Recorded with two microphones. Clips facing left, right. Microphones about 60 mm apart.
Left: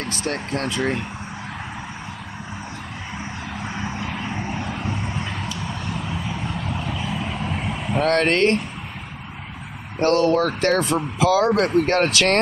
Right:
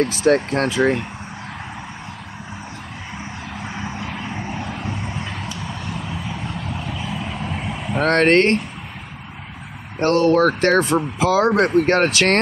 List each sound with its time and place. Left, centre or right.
0.2 s speech: right
3.6 s vehicle: centre
3.9 s vehicle: centre
5.1 s a sound: centre
6.2 s vehicle: centre
8.0 s speech: right
9.9 s speech: right